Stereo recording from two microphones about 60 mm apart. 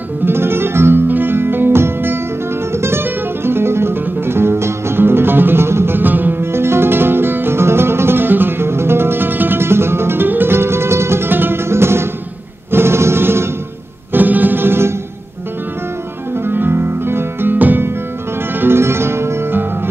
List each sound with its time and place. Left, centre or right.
0.2 s music: right
14.1 s music: right
16.4 s music: right